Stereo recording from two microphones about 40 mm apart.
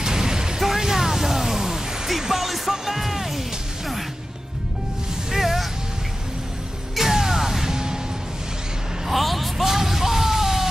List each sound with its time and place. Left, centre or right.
0.0 s music: centre
5.3 s a sound: centre
7.0 s music: centre
9.0 s music: centre